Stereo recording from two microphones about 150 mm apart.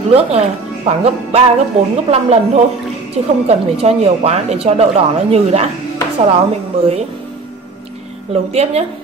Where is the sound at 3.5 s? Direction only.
45° right (ahead or behind).